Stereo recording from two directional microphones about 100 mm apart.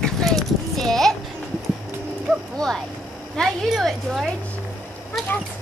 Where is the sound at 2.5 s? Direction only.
5° left (ahead or behind).